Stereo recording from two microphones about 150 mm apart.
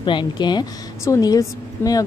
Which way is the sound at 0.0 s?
30° left (ahead or behind).